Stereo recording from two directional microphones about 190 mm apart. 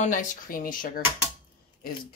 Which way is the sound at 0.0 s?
45° left (ahead or behind).